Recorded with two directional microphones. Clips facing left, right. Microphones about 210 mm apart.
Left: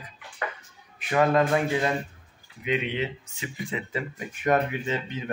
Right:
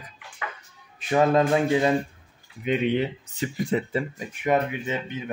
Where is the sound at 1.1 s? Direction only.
20° right (ahead or behind).